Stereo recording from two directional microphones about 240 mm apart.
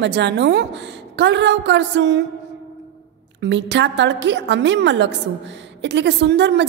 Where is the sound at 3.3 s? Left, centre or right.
Right.